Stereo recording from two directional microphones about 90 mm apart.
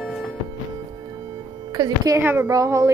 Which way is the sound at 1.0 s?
55° right (ahead or behind).